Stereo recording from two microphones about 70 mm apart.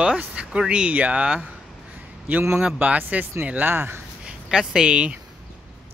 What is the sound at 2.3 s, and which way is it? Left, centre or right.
Speech, right.